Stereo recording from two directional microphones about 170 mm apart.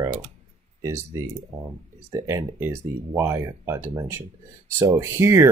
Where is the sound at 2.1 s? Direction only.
15° right (ahead or behind).